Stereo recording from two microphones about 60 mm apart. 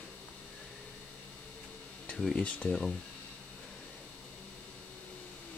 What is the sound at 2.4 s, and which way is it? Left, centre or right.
Speech, centre.